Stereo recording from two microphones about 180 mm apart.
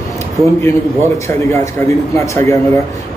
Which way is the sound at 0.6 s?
15° left (ahead or behind).